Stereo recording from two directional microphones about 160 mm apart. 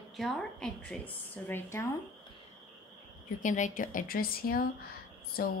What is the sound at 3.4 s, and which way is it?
A woman's voice, 50° left (ahead or behind).